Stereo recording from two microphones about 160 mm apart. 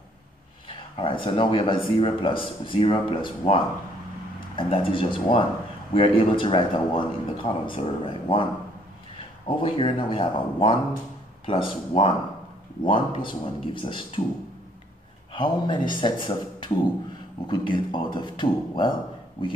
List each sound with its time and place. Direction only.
0.7 s a man's voice: 30° left (ahead or behind)
4.6 s a man's voice: 35° left (ahead or behind)
9.6 s a man's voice: 35° left (ahead or behind)
15.3 s a man's voice: 30° left (ahead or behind)